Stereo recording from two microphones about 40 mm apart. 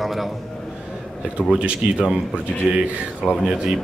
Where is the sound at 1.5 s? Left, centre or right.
Right.